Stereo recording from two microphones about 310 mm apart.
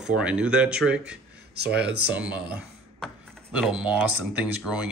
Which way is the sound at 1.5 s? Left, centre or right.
Right.